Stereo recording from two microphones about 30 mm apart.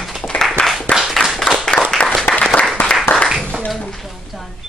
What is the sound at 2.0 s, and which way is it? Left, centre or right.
Applause, left.